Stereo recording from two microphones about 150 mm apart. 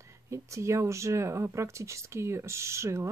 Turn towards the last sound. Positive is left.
turn(degrees=-20)  # may be behind; listen again after turning